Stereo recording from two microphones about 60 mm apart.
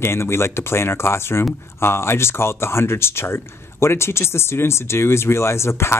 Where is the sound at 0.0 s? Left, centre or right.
Left.